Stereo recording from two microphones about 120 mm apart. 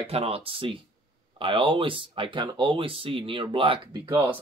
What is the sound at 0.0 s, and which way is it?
Speech, 55° right (ahead or behind).